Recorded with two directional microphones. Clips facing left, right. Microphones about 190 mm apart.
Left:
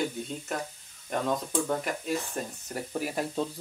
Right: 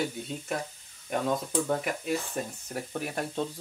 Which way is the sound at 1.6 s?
5° right (ahead or behind).